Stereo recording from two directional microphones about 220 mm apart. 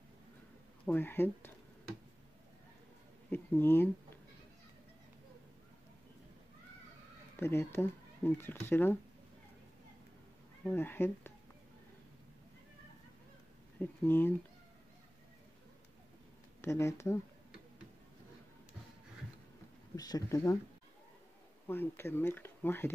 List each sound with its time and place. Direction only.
0.8 s speech: 10° left (ahead or behind)
3.3 s a sound: 10° left (ahead or behind)
7.3 s speech: 10° left (ahead or behind)
10.6 s speech: 10° left (ahead or behind)
13.7 s speech: 10° left (ahead or behind)
16.6 s speech: 10° left (ahead or behind)
20.0 s speech: 15° left (ahead or behind)
21.6 s speech: 10° left (ahead or behind)